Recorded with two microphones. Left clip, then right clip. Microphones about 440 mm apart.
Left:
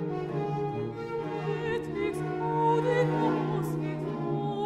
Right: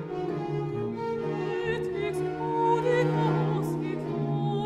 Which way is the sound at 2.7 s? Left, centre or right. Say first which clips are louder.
Right 2 dB; centre.